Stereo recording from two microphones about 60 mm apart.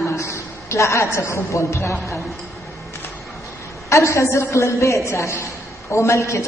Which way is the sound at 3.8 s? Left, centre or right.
Left.